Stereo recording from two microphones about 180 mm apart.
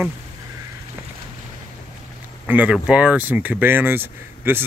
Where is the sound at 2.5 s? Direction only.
10° right (ahead or behind).